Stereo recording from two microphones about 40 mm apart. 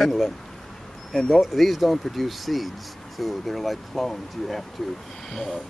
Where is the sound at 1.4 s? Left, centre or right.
Centre.